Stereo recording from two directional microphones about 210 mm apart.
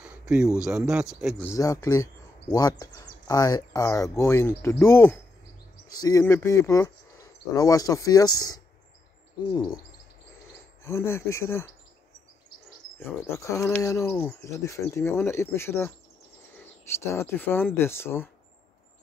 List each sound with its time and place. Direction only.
0.0 s a sound: 5° right (ahead or behind)
0.7 s speech: 5° right (ahead or behind)
1.4 s speech: 15° left (ahead or behind)
10.8 s speech: 15° left (ahead or behind)
13.0 s speech: 10° left (ahead or behind)